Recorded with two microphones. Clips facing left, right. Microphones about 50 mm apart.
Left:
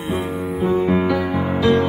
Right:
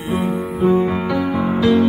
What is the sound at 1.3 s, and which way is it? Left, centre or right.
Music, centre.